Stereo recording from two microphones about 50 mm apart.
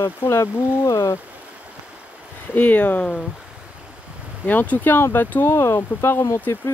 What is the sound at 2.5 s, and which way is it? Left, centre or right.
Speech, left.